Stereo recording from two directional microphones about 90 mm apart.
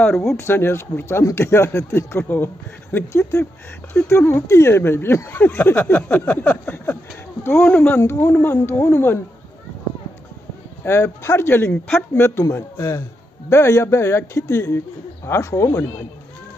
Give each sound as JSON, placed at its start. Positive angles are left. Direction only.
{"t": 0.1, "sound": "speech", "side_deg": 0}
{"t": 0.4, "sound": "speech", "side_deg": 25}
{"t": 3.1, "sound": "speech", "side_deg": 35}
{"t": 8.0, "sound": "speech", "side_deg": 30}
{"t": 10.8, "sound": "speech", "side_deg": 30}